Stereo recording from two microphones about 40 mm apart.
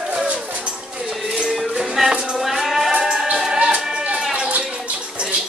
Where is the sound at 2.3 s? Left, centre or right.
Centre.